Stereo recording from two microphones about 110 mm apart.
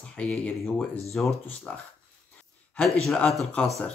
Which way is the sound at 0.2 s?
10° left (ahead or behind).